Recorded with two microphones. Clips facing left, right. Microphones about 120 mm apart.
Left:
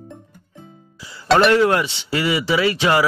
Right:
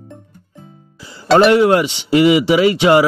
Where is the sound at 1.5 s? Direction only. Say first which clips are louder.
Right 4 dB; 15° right (ahead or behind).